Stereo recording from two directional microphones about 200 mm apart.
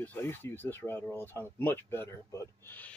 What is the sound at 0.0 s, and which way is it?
Speech, 10° left (ahead or behind).